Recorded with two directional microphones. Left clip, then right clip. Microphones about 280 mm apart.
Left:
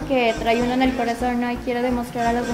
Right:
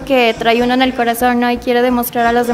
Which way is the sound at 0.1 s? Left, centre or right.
Right.